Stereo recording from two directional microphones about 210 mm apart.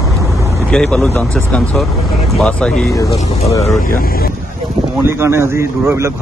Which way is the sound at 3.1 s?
30° left (ahead or behind).